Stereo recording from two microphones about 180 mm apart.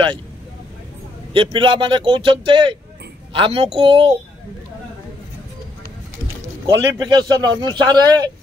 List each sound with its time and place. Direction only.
1.3 s a man's voice: 30° right (ahead or behind)
6.6 s a man's voice: 20° right (ahead or behind)